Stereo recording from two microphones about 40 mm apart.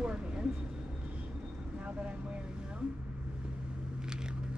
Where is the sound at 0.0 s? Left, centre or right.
Right.